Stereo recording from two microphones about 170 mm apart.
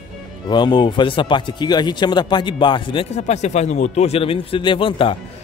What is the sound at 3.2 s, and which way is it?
Speech, 40° left (ahead or behind).